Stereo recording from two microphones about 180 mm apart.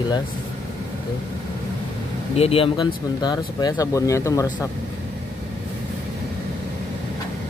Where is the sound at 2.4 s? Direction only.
30° left (ahead or behind).